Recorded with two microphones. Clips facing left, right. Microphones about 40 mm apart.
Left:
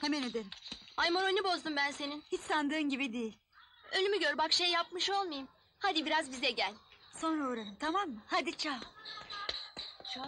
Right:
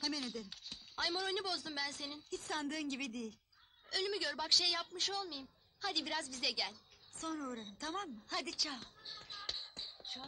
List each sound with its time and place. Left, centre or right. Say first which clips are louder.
0.1 s a woman's voice: left 7 dB; centre
7.9 s a woman's voice: left 9 dB; centre
8.4 s a woman's voice: left 6 dB; left
9.2 s music: left 5 dB; left
10.1 s a woman's voice: left 8 dB; centre